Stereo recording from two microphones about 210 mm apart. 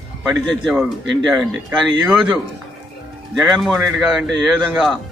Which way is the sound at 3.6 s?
Centre (ahead or behind).